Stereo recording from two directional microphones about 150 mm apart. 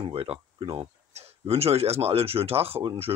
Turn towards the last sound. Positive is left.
turn(degrees=-30)  # may be behind; listen again after turning